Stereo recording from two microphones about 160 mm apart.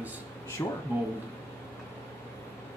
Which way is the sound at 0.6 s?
20° left (ahead or behind).